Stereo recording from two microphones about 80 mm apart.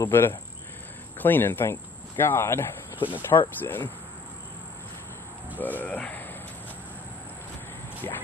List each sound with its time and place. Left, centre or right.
0.0 s speech: left
5.6 s speech: left